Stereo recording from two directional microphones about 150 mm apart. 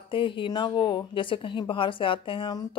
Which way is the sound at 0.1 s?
35° left (ahead or behind).